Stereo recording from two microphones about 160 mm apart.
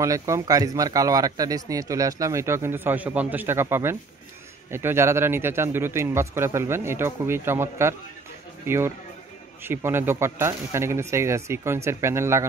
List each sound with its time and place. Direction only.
0.0 s a man's voice: 20° right (ahead or behind)